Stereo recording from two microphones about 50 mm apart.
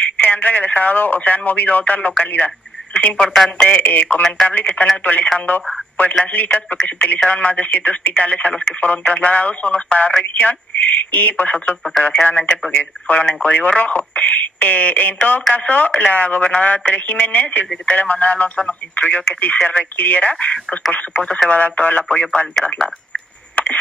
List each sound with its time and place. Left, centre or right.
0.0 s speech: left
2.3 s telephone: left
3.2 s speech: centre
3.6 s speech: left